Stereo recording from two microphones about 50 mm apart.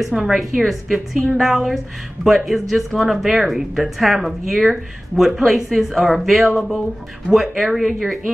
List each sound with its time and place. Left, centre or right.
0.0 s a woman's voice: centre